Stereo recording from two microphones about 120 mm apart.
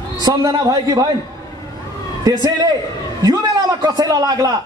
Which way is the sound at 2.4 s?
35° right (ahead or behind).